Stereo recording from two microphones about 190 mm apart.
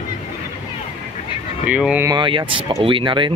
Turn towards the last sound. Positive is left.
turn(degrees=-25)  # may be behind; listen again after turning